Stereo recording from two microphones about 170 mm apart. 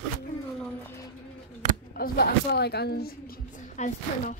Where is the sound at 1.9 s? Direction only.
65° left (ahead or behind); by 4.3 s 45° left (ahead or behind).